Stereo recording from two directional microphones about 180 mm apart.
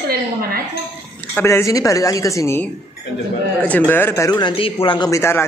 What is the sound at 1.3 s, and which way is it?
A man's voice, 15° left (ahead or behind).